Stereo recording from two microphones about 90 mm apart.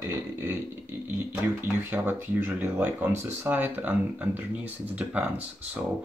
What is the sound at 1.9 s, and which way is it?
Speech, 25° right (ahead or behind).